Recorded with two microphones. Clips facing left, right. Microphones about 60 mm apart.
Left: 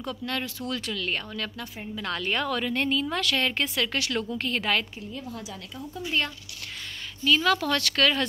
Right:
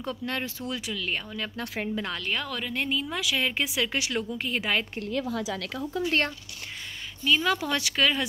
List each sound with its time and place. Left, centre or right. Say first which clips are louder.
0.0 s a woman's voice: even; right
2.1 s a woman's voice: left 4 dB; centre
4.9 s speech: right 7 dB; right
6.0 s speech: right 1 dB; right
7.2 s a woman's voice: left 2 dB; centre